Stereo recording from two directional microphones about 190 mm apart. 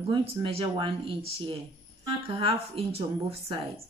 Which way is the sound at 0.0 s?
30° right (ahead or behind).